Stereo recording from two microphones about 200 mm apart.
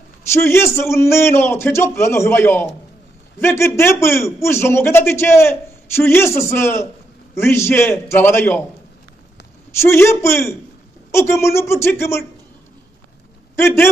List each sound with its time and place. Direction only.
0.3 s a man's voice: 15° left (ahead or behind)
9.8 s a man's voice: 15° left (ahead or behind)
13.6 s a man's voice: 10° left (ahead or behind)